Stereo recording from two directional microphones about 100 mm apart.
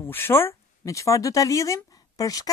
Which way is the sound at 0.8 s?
35° left (ahead or behind).